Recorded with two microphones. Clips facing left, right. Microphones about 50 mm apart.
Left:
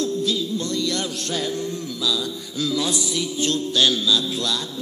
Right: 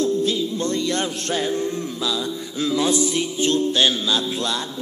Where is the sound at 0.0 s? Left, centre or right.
Right.